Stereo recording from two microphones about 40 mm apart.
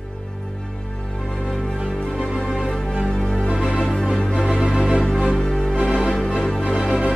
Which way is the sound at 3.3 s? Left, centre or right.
Centre.